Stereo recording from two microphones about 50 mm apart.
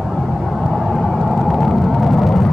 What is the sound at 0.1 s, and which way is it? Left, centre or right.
Vehicle, centre.